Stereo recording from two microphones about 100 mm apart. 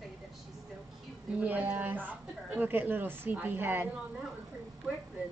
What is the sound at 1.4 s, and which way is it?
Speech, 15° right (ahead or behind).